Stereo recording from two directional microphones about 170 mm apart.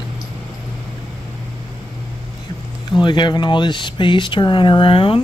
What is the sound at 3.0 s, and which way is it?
Speech, 25° left (ahead or behind).